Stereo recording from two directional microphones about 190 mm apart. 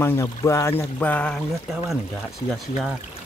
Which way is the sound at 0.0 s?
15° left (ahead or behind).